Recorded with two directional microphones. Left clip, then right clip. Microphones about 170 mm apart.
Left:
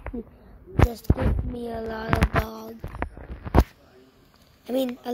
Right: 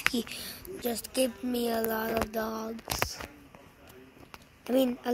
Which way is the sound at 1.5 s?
15° right (ahead or behind).